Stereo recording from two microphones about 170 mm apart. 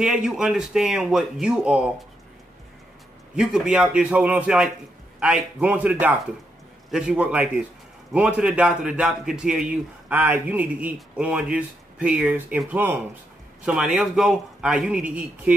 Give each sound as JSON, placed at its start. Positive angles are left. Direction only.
{"t": 0.0, "sound": "a man's voice", "side_deg": -5}
{"t": 3.3, "sound": "a man's voice", "side_deg": -5}